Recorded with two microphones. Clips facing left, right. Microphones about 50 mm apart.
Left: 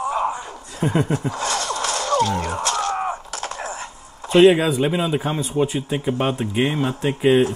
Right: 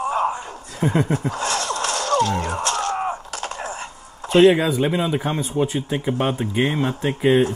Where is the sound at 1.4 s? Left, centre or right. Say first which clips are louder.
Even; left.